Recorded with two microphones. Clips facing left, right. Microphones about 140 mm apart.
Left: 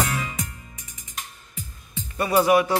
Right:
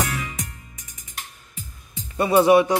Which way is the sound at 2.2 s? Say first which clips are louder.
Right 3 dB; 25° right (ahead or behind).